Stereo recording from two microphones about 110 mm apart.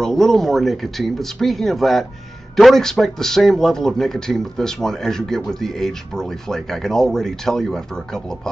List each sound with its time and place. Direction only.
0.0 s speech: 5° left (ahead or behind)